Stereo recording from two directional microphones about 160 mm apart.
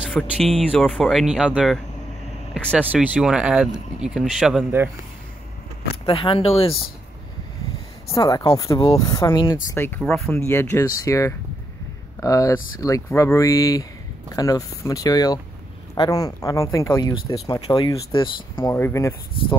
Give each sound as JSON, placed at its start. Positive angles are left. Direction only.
{"t": 0.1, "sound": "speech", "side_deg": 5}
{"t": 2.5, "sound": "speech", "side_deg": 5}
{"t": 2.9, "sound": "speech", "side_deg": -5}
{"t": 6.0, "sound": "speech", "side_deg": 35}
{"t": 8.1, "sound": "speech", "side_deg": 25}
{"t": 9.8, "sound": "speech", "side_deg": 10}
{"t": 10.3, "sound": "speech", "side_deg": 15}
{"t": 18.7, "sound": "speech", "side_deg": 15}